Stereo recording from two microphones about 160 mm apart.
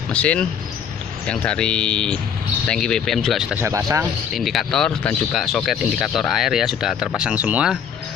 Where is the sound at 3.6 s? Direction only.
20° right (ahead or behind).